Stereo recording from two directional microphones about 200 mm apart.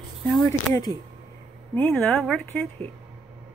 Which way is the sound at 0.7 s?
20° left (ahead or behind).